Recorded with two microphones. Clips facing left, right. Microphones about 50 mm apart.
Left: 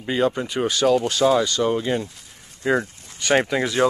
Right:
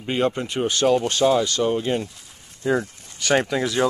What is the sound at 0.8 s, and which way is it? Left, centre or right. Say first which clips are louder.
Speech: even; centre.